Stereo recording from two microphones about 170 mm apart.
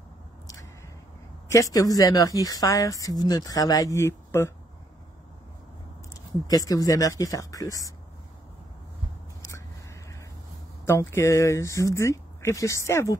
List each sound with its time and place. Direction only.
1.5 s a woman's voice: 20° left (ahead or behind)
6.4 s a woman's voice: 20° left (ahead or behind)
10.9 s speech: 15° left (ahead or behind)